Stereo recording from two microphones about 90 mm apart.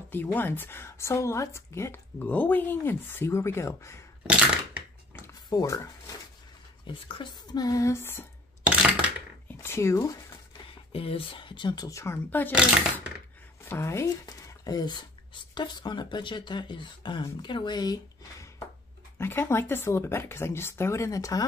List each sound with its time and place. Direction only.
0.1 s a woman's voice: 20° left (ahead or behind)
4.3 s crushing: 10° right (ahead or behind)
5.5 s speech: 40° left (ahead or behind)
6.9 s speech: 70° left (ahead or behind)
7.5 s a sound: 45° left (ahead or behind)
7.9 s a woman's voice: 25° left (ahead or behind)
9.5 s speech: 25° left (ahead or behind)
10.7 s speech: 90° left; by 11.9 s 55° left (ahead or behind)
11.9 s a woman's voice: 30° left (ahead or behind)
13.7 s speech: 30° left (ahead or behind)
14.2 s speech: 45° left (ahead or behind)
19.1 s a woman's voice: 25° left (ahead or behind)